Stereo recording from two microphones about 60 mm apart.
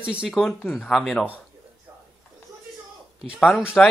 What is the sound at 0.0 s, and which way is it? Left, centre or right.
Speech, centre.